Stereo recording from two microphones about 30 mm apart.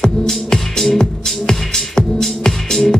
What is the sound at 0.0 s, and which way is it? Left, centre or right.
Music, centre.